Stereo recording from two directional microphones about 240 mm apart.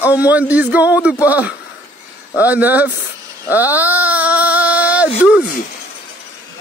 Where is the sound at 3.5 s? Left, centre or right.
Centre.